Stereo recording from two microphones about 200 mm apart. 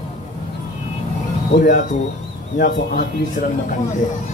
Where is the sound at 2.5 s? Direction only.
50° left (ahead or behind).